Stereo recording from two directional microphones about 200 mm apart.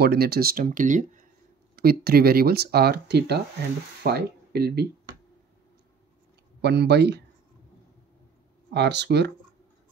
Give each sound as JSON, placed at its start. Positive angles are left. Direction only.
{"t": 0.0, "sound": "speech", "side_deg": -50}
{"t": 6.6, "sound": "speech", "side_deg": -55}
{"t": 8.7, "sound": "speech", "side_deg": -60}